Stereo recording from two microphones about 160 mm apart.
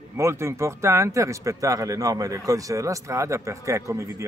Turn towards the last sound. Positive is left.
turn(degrees=-20)  # may be behind; listen again after turning